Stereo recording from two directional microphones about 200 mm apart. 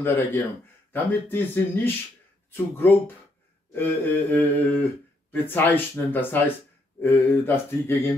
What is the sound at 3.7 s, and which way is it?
Speech, 10° left (ahead or behind).